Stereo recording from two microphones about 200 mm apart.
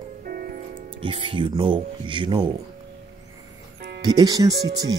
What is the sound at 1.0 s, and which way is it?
Speech, 25° right (ahead or behind).